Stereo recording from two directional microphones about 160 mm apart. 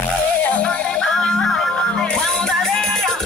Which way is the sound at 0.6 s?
5° left (ahead or behind).